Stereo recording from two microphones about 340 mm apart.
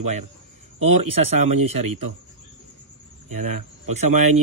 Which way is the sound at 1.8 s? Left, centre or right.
Right.